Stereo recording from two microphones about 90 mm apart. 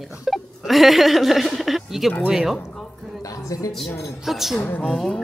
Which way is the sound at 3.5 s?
40° left (ahead or behind).